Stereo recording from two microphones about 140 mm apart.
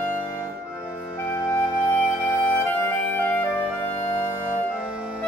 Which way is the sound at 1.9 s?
10° left (ahead or behind).